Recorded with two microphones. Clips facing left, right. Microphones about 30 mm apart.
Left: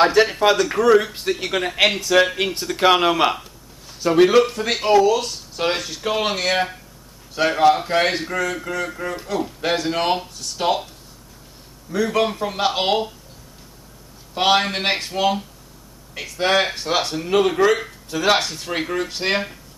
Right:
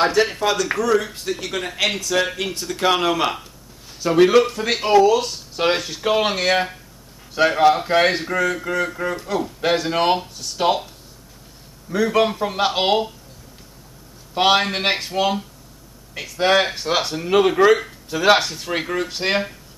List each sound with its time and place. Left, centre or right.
0.0 s speech: centre
11.9 s speech: centre
14.3 s speech: centre